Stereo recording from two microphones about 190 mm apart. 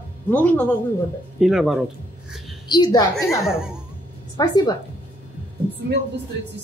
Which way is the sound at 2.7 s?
20° left (ahead or behind).